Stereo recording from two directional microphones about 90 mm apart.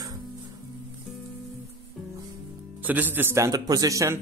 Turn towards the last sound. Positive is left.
turn(degrees=-35)  # may be behind; listen again after turning